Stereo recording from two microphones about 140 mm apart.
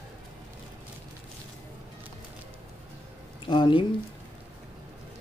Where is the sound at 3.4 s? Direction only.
35° left (ahead or behind).